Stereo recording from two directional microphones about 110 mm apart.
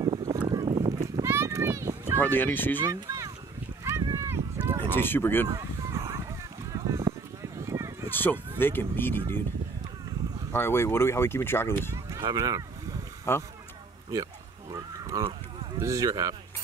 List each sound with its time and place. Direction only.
0.3 s boat: 35° right (ahead or behind)
1.2 s a sound: 25° right (ahead or behind)
2.1 s speech: 20° left (ahead or behind)
2.8 s speech: 30° right (ahead or behind)
3.8 s a sound: 25° right (ahead or behind)
4.8 s speech: 20° left (ahead or behind)
5.5 s fowl: 30° right (ahead or behind)
6.7 s a sound: 30° right (ahead or behind)
8.2 s speech: 20° left (ahead or behind)
10.5 s speech: 20° left (ahead or behind)
12.2 s speech: 35° right (ahead or behind)
13.3 s speech: 20° left (ahead or behind)
14.7 s a sound: 35° right (ahead or behind)
15.8 s speech: 30° right (ahead or behind)